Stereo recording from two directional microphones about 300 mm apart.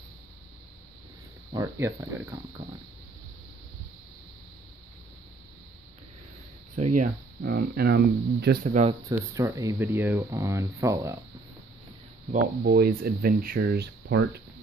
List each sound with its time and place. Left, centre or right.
1.5 s speech: centre
6.7 s speech: right
9.1 s speech: centre
12.3 s speech: right